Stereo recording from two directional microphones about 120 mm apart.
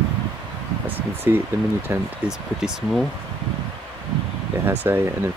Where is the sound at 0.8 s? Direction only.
20° right (ahead or behind).